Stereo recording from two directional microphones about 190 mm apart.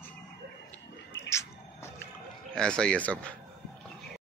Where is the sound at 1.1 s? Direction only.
15° left (ahead or behind).